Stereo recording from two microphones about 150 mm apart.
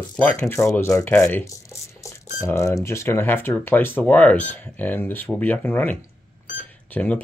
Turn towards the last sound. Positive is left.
turn(degrees=10)  # may be behind; listen again after turning